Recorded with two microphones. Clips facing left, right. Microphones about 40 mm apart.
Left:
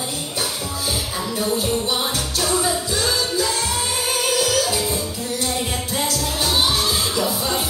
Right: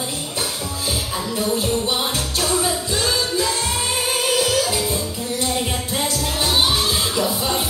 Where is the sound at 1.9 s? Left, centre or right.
Right.